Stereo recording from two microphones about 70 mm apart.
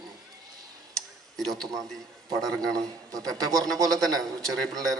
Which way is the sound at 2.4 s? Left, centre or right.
Centre.